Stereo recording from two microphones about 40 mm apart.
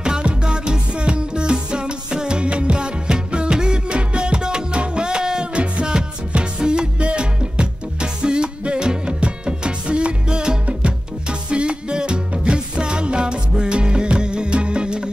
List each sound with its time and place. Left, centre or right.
0.0 s music: right